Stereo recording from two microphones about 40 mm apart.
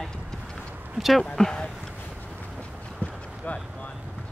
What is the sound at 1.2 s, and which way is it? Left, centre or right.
Speech, centre.